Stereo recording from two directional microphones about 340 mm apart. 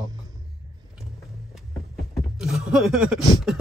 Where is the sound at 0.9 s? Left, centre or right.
Centre.